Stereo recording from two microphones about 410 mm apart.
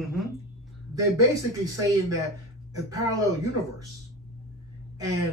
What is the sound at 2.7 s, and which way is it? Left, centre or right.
Speech, centre.